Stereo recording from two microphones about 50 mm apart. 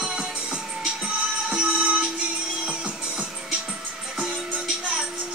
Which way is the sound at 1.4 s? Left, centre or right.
Right.